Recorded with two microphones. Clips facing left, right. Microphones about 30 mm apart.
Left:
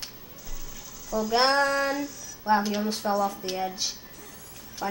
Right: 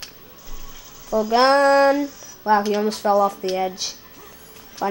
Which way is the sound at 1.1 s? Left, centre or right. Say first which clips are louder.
Right 7 dB; right.